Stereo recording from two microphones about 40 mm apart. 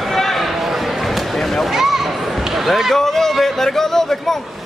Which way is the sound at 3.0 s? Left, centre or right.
Centre.